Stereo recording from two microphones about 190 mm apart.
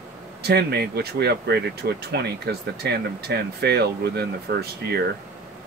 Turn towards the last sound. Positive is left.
turn(degrees=-60)  # may be behind; listen again after turning